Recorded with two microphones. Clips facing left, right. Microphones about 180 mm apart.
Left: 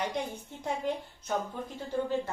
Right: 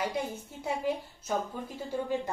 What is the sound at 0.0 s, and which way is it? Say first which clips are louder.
Speech: right 1 dB; 5° right (ahead or behind).